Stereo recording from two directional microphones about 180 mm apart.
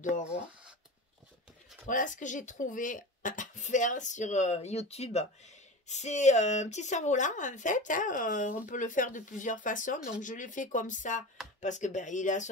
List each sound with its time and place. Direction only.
1.9 s speech: 45° left (ahead or behind)